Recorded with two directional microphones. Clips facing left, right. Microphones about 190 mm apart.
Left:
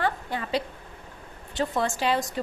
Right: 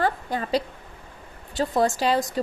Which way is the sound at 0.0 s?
40° right (ahead or behind).